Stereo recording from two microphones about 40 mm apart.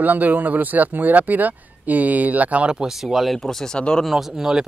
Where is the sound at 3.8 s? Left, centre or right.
Left.